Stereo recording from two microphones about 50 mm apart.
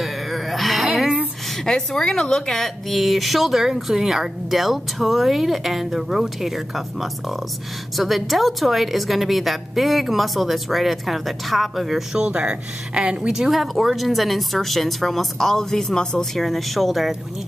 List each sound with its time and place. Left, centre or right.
0.0 s a sound: centre
1.6 s a woman's voice: centre
2.9 s speech: centre
12.1 s speech: right
13.3 s speech: centre
16.3 s speech: centre